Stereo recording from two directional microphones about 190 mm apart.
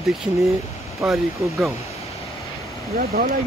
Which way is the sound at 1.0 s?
Centre (ahead or behind).